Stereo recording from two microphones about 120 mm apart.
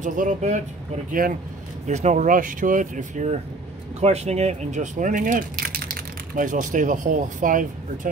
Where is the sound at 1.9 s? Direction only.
75° right (ahead or behind); by 3.4 s 90° right.